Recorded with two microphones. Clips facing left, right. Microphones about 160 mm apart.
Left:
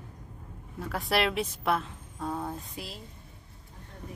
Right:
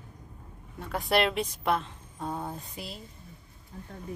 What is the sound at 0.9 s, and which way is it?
A woman's voice, centre (ahead or behind).